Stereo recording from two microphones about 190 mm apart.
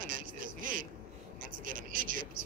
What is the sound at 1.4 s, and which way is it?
Speech, 45° right (ahead or behind).